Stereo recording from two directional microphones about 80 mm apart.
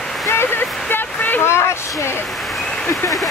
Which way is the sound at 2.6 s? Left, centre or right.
Centre.